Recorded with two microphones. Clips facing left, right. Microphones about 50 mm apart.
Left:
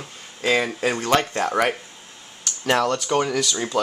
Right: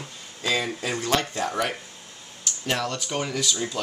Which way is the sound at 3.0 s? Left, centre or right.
Left.